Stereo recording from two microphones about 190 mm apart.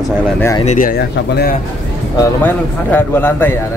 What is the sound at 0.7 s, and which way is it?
Speech, 45° left (ahead or behind).